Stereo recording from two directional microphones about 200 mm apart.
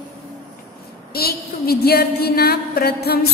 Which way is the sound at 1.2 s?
50° left (ahead or behind).